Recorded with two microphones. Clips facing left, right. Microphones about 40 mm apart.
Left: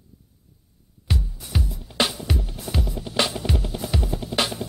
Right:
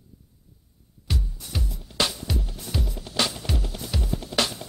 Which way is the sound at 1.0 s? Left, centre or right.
Centre.